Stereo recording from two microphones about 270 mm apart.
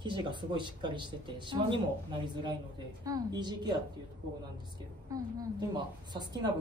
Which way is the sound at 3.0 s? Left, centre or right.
Centre.